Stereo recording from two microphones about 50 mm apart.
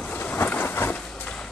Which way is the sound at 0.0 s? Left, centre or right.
Left.